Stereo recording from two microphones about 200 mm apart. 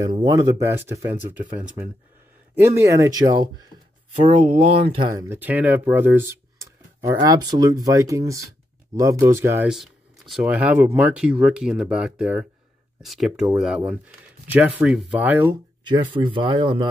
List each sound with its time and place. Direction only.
0.0 s speech: 20° right (ahead or behind)
5.1 s speech: 10° right (ahead or behind)
15.8 s speech: 20° right (ahead or behind)